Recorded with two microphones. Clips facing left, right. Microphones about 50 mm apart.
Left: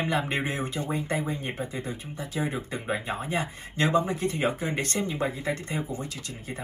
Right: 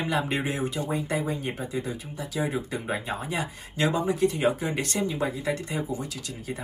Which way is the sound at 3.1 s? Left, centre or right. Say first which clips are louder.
Left 1 dB; left.